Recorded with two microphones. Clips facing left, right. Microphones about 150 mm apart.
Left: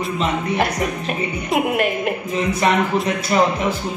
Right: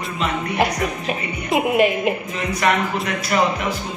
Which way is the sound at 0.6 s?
Centre (ahead or behind).